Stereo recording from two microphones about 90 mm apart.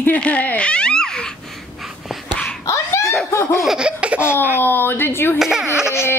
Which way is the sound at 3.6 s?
5° right (ahead or behind).